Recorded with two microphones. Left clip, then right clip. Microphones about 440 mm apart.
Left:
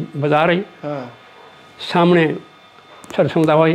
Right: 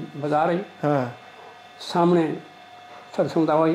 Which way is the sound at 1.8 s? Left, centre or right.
Left.